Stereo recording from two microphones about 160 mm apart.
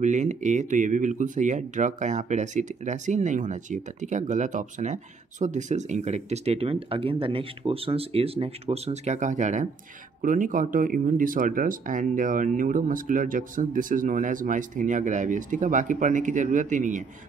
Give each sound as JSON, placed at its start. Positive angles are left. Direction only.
{"t": 0.0, "sound": "speech", "side_deg": -50}